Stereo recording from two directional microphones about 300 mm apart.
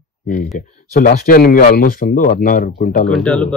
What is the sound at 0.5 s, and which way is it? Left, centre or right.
Speech, left.